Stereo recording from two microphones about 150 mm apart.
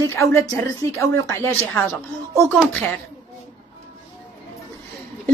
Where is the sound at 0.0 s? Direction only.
20° left (ahead or behind).